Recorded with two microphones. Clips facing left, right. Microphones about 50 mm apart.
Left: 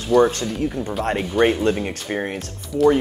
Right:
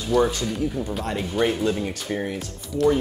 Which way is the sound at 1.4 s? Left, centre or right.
Left.